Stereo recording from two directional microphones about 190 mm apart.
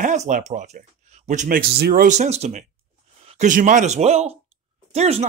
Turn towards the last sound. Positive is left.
turn(degrees=-35)  # may be behind; listen again after turning